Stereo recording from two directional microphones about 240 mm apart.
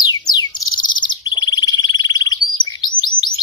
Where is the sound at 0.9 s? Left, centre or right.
Centre.